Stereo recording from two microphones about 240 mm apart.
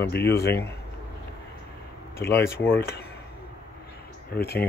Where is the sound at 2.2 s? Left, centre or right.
Centre.